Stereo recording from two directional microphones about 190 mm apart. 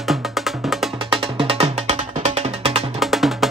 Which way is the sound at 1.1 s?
30° right (ahead or behind).